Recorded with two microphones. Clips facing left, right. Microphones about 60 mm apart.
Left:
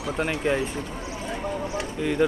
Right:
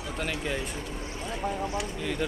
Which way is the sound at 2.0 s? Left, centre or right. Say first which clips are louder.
Left 11 dB; centre.